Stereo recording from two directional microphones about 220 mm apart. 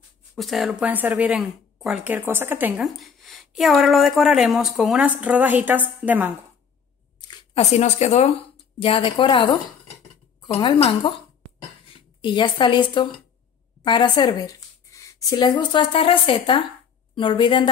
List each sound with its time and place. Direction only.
0.4 s a woman's voice: centre (ahead or behind)
7.2 s a woman's voice: 25° left (ahead or behind)